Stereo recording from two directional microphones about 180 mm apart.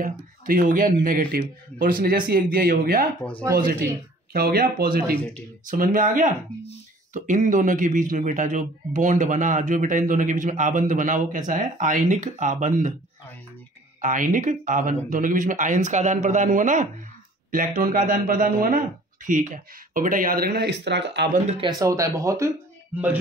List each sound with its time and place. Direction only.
0.0 s speech: 50° right (ahead or behind)
5.7 s speech: 50° right (ahead or behind)
14.0 s speech: 45° right (ahead or behind); by 21.3 s 75° right (ahead or behind)
21.5 s speech: 20° right (ahead or behind)